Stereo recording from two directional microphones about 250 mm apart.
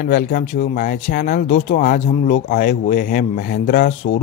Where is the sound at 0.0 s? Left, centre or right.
Left.